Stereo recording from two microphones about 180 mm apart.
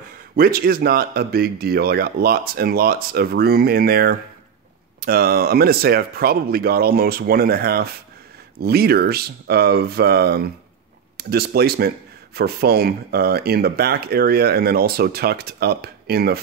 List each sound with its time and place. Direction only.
0.4 s speech: 55° right (ahead or behind)